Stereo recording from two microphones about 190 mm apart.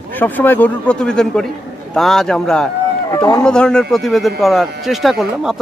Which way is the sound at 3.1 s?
20° left (ahead or behind).